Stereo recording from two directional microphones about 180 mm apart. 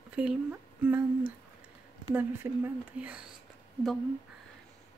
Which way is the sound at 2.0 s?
15° right (ahead or behind).